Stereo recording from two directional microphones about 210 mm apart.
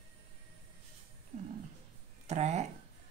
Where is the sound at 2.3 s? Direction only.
30° right (ahead or behind).